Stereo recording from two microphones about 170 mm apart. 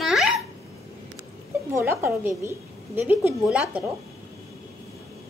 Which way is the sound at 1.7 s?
15° right (ahead or behind).